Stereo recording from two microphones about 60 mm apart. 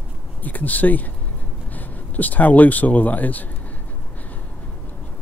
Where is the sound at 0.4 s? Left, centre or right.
Left.